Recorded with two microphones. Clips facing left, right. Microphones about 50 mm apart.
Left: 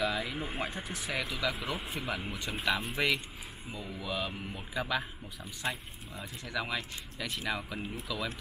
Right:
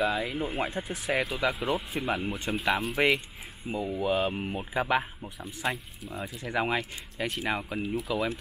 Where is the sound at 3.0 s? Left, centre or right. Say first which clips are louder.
Right 6 dB; right.